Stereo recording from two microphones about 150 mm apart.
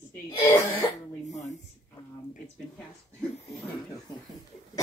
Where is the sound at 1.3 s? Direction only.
50° left (ahead or behind).